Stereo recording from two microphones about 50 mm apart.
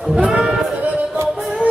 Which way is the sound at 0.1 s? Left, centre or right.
Centre.